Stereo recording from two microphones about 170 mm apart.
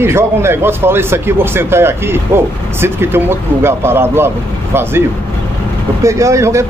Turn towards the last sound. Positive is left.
turn(degrees=-15)  # may be behind; listen again after turning